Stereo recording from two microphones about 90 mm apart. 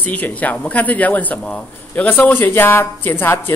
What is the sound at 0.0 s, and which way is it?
Speech, 15° left (ahead or behind).